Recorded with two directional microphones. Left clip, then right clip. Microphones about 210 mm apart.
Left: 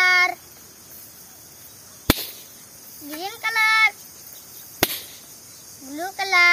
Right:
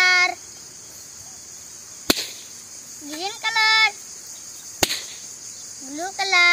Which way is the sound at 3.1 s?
5° left (ahead or behind).